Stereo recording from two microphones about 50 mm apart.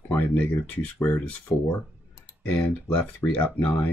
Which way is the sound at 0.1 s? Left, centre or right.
Left.